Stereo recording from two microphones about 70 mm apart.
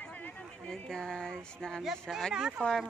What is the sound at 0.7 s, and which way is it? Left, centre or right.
Speech, centre.